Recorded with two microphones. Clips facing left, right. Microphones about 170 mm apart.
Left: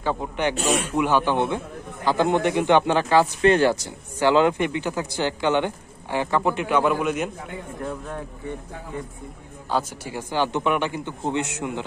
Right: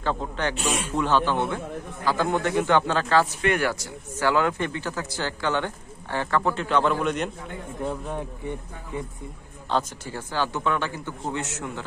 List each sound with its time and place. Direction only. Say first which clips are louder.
0.0 s speech: left 3 dB; 15° left (ahead or behind)
7.8 s speech: right 3 dB; 15° right (ahead or behind)
9.7 s speech: left 1 dB; 10° left (ahead or behind)